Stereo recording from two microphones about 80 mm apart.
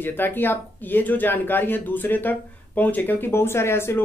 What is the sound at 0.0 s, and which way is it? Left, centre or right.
Speech, left.